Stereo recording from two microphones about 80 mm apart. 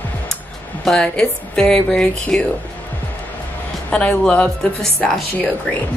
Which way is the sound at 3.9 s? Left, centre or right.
Centre.